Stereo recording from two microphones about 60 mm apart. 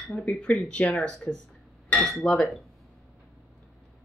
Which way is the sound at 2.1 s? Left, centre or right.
Centre.